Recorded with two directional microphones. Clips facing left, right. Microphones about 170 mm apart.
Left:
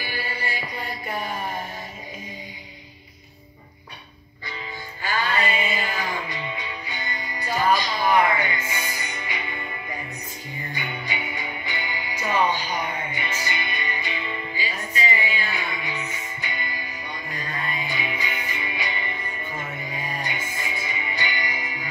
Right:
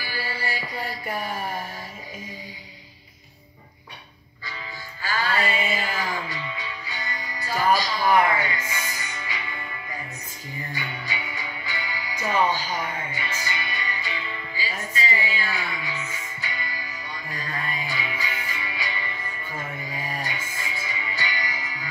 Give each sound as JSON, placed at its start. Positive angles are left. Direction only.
{"t": 0.5, "sound": "mantra", "side_deg": 20}
{"t": 5.0, "sound": "music", "side_deg": 20}